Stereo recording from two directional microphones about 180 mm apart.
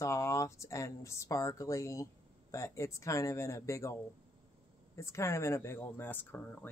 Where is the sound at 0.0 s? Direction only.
15° left (ahead or behind).